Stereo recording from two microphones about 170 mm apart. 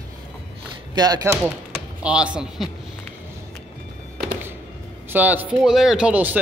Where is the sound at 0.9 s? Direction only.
20° right (ahead or behind).